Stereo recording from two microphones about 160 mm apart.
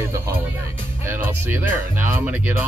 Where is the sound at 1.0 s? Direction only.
15° right (ahead or behind).